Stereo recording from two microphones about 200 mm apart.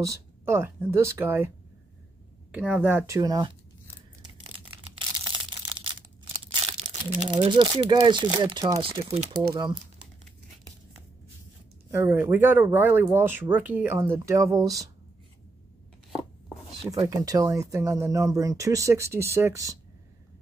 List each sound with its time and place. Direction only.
0.0 s speech: 15° right (ahead or behind)
2.5 s speech: 5° right (ahead or behind)
4.8 s crushing: 25° right (ahead or behind)
6.5 s speech: 30° right (ahead or behind)
11.9 s speech: 15° right (ahead or behind)
17.1 s speech: 20° right (ahead or behind)